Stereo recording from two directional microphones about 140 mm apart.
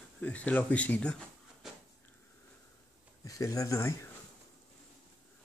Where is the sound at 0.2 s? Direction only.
10° left (ahead or behind).